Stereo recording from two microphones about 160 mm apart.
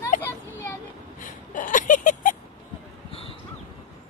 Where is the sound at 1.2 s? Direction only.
55° left (ahead or behind).